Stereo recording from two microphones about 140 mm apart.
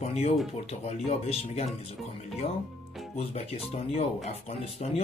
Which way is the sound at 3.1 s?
45° left (ahead or behind).